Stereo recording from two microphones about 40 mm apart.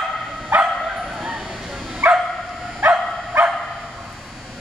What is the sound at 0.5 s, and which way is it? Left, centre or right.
Bow-wow, right.